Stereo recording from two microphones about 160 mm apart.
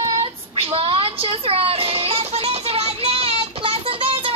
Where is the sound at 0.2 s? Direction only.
35° right (ahead or behind).